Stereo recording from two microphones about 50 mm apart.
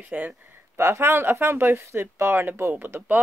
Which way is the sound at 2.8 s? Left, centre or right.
Right.